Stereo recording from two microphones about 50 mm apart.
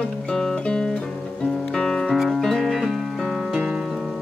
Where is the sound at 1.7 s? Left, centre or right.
Centre.